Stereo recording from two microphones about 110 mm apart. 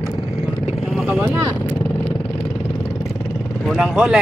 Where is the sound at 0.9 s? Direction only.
Centre (ahead or behind).